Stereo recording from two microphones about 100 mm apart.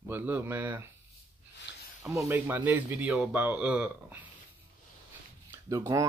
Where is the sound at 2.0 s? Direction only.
30° right (ahead or behind).